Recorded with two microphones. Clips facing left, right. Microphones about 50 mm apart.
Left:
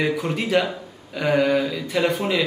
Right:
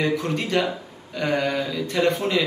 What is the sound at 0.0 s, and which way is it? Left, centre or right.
Speech, centre.